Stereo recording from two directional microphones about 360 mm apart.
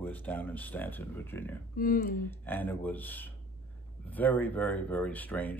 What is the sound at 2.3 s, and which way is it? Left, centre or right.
A man's voice, centre.